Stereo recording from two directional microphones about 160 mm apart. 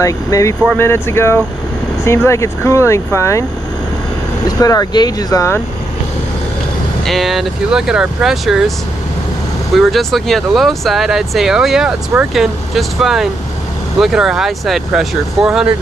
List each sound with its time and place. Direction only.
0.0 s speech: 20° left (ahead or behind)
4.5 s speech: 25° left (ahead or behind)
7.1 s speech: centre (ahead or behind)
9.8 s speech: centre (ahead or behind)